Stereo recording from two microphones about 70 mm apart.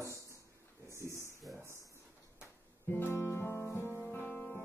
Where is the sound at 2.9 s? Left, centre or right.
Left.